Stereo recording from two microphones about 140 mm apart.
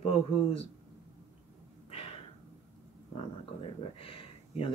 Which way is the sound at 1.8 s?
45° left (ahead or behind).